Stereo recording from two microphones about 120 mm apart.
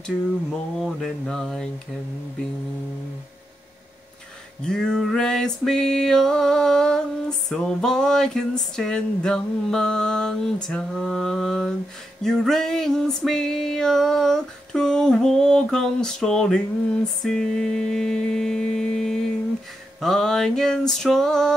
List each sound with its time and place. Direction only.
0.0 s music: 5° left (ahead or behind)
4.6 s music: 5° left (ahead or behind)